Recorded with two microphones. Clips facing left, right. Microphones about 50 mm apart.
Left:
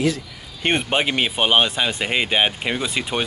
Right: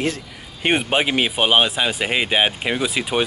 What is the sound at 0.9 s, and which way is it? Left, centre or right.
Speech, centre.